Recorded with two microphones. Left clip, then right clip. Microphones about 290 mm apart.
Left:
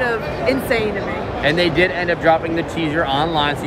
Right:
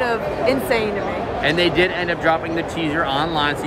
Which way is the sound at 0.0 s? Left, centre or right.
Centre.